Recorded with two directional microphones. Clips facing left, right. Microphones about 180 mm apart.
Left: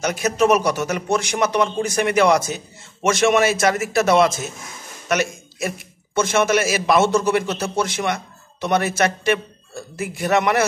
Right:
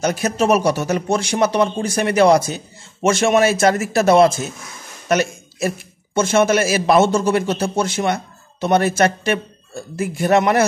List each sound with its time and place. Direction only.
0.0 s speech: 30° right (ahead or behind)
5.0 s a sound: 30° right (ahead or behind)
6.1 s a man's voice: 30° right (ahead or behind)